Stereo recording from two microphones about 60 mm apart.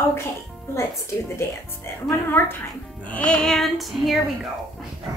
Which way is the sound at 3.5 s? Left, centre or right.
Centre.